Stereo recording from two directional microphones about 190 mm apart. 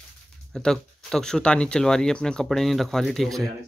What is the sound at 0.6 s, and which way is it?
Speech, 5° left (ahead or behind).